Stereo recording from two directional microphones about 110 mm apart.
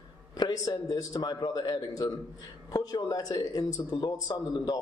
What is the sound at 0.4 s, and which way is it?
A man's voice, 35° left (ahead or behind).